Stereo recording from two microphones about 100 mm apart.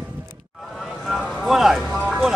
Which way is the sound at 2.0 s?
5° right (ahead or behind).